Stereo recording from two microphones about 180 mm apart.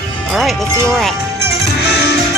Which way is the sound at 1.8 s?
70° left (ahead or behind).